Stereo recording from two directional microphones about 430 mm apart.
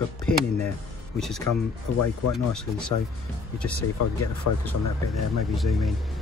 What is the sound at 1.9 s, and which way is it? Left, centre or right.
Speech, left.